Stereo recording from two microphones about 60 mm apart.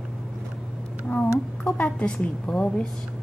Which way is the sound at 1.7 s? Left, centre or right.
Centre.